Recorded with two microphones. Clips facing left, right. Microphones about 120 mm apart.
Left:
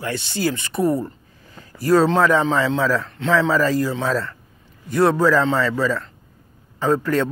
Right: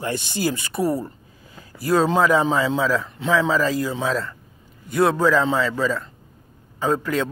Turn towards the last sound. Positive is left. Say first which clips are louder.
# left 3 dB
turn(degrees=-5)  # may be behind; listen again after turning